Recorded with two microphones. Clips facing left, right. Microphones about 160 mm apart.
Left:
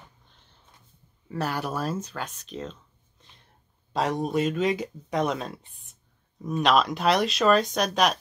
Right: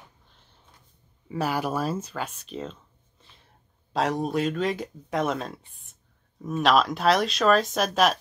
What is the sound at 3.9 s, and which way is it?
Speech, centre (ahead or behind).